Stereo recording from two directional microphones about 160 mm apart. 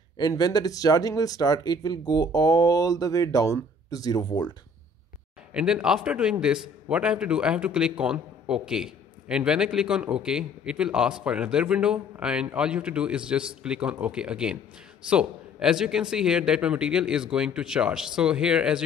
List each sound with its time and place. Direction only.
0.2 s speech: 25° left (ahead or behind)
5.5 s a man's voice: 5° right (ahead or behind)